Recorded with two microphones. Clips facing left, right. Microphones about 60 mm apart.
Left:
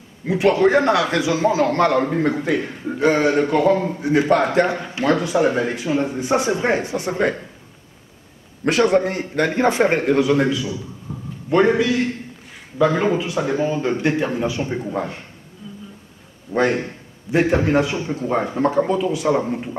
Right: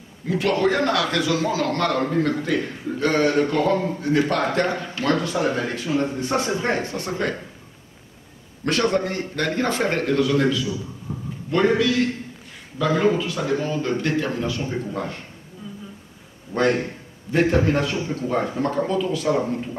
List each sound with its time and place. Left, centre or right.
0.3 s a man's voice: centre
8.6 s a man's voice: centre
11.1 s a sound: centre
11.5 s a man's voice: centre
17.3 s a man's voice: centre